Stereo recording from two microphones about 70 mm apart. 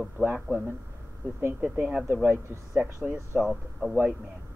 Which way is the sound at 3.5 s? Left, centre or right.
Centre.